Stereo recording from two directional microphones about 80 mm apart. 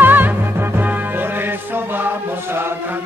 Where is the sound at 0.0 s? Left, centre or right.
Right.